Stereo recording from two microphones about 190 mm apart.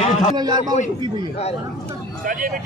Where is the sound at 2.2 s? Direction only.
45° right (ahead or behind).